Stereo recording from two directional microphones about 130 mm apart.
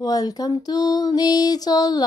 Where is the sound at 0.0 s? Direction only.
30° left (ahead or behind).